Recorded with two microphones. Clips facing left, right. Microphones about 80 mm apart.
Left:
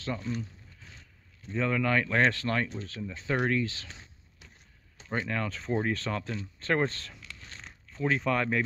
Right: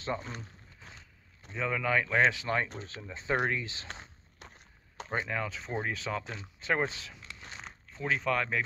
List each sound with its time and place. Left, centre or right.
0.3 s speech: right
1.5 s speech: centre
3.9 s walk: right
5.2 s speech: centre
7.2 s whispering: right
7.9 s speech: centre